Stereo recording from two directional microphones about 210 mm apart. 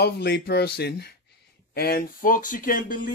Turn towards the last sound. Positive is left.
turn(degrees=40)  # may be behind; listen again after turning